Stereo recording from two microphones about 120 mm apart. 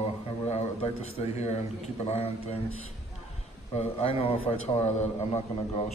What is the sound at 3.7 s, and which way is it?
Speech, 60° left (ahead or behind).